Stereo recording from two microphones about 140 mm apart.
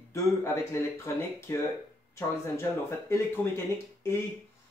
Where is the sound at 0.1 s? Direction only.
20° left (ahead or behind).